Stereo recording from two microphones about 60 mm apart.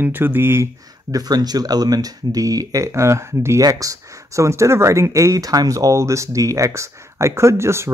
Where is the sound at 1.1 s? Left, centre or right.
Right.